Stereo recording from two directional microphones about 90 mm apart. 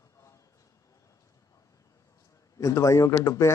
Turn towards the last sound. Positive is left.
turn(degrees=35)  # may be behind; listen again after turning